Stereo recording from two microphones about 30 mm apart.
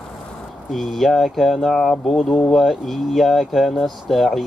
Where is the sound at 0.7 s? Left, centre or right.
Centre.